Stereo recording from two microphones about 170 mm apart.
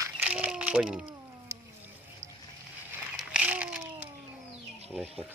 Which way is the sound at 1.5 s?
15° right (ahead or behind).